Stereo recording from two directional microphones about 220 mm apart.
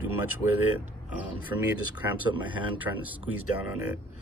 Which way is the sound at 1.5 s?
15° right (ahead or behind).